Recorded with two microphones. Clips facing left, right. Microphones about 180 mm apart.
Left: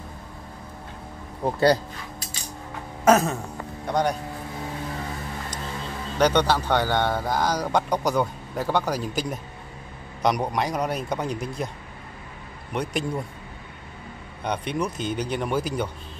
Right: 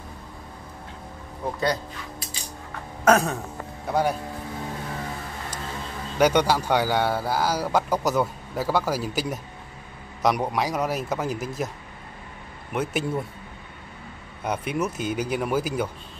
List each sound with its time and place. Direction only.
1.4 s speech: 35° left (ahead or behind)
3.1 s a man's voice: centre (ahead or behind)
6.1 s a man's voice: 10° right (ahead or behind)
12.7 s a man's voice: 5° right (ahead or behind)
14.4 s a man's voice: 5° right (ahead or behind)